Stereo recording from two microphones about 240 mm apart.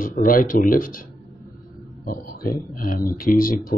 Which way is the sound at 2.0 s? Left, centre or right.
Left.